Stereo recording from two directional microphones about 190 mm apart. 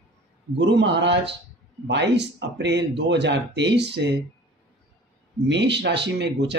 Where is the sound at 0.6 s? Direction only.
70° right (ahead or behind).